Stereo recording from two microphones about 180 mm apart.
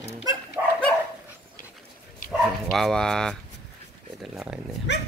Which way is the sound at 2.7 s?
Centre (ahead or behind).